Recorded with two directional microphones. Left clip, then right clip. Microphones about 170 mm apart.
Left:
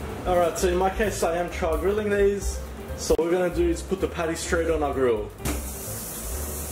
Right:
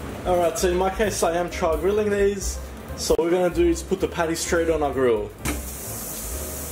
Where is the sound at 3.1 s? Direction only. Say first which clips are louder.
Right 2 dB; 15° right (ahead or behind).